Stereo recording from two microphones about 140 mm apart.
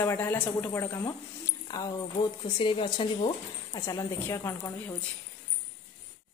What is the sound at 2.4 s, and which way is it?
Speech, 35° left (ahead or behind).